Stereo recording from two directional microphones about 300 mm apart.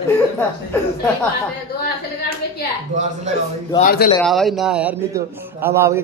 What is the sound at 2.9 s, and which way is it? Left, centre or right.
Speech, right.